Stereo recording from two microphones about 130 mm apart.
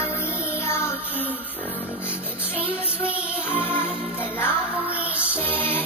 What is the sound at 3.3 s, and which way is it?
Music, 15° left (ahead or behind).